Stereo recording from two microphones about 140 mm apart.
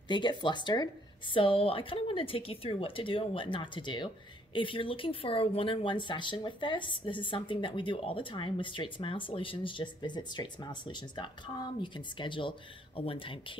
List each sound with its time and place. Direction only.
0.1 s speech: 35° left (ahead or behind)